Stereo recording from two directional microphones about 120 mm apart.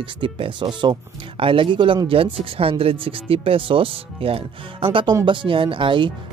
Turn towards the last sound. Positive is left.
turn(degrees=-45)  # may be behind; listen again after turning